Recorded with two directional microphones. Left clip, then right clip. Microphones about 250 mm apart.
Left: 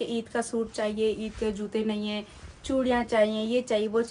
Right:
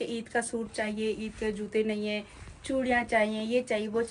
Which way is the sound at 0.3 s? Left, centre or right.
Centre.